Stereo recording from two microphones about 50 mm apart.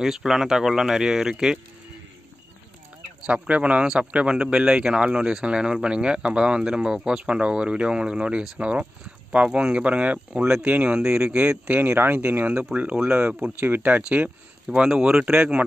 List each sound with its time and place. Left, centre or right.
0.0 s speech: centre
3.3 s speech: right
3.8 s speech: centre
11.8 s speech: right
12.7 s speech: right
13.6 s speech: right
14.9 s speech: centre